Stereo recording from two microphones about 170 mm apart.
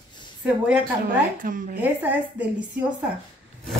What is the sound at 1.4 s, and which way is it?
Speech, 50° right (ahead or behind).